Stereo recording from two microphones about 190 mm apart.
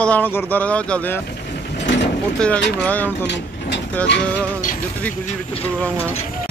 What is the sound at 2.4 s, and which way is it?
Speech, 5° left (ahead or behind).